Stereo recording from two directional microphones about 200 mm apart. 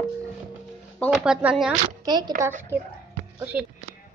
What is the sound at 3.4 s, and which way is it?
Music, 5° right (ahead or behind).